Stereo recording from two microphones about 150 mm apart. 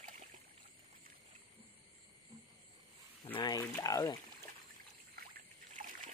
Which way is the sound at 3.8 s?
25° left (ahead or behind).